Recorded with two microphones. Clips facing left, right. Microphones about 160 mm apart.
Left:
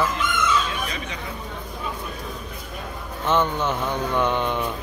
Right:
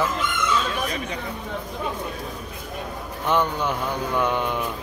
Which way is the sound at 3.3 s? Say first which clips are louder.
Left 1 dB; 10° right (ahead or behind).